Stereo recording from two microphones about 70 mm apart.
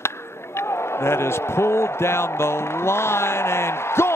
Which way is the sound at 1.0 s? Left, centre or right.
Left.